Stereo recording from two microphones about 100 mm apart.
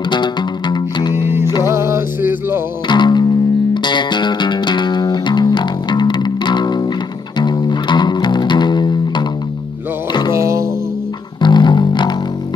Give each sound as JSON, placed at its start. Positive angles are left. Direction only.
{"t": 0.1, "sound": "music", "side_deg": 50}
{"t": 1.1, "sound": "music", "side_deg": -25}
{"t": 2.9, "sound": "music", "side_deg": 50}
{"t": 10.3, "sound": "music", "side_deg": -30}
{"t": 11.4, "sound": "music", "side_deg": 50}